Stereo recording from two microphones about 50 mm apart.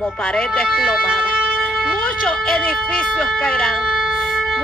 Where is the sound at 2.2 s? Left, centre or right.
Centre.